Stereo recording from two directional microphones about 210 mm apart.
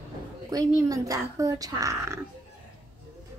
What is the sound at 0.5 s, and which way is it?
Speech, 15° right (ahead or behind).